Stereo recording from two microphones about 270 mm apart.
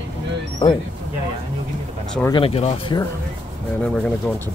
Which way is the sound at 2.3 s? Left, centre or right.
Left.